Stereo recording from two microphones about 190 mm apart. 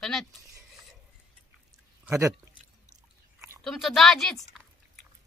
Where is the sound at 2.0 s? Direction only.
15° right (ahead or behind).